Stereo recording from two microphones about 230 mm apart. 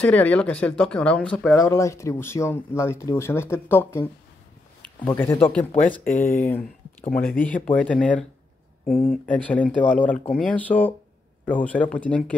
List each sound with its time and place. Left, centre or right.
0.0 s speech: centre
7.1 s speech: left
7.3 s speech: centre